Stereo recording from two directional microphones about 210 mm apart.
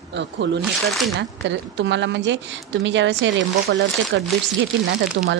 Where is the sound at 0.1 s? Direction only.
55° right (ahead or behind).